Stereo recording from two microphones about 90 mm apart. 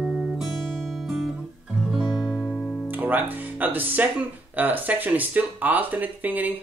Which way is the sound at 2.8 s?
20° right (ahead or behind).